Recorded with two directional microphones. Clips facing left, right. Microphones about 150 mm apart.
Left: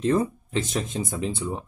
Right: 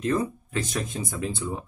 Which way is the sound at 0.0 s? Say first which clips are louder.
Left 3 dB; 25° left (ahead or behind).